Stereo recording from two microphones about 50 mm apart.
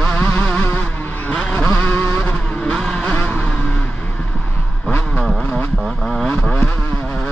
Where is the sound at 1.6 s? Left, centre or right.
Left.